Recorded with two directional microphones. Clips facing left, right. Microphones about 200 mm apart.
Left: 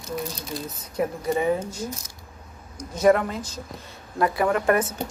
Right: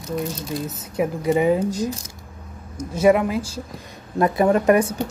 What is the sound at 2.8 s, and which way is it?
Speech, 10° right (ahead or behind).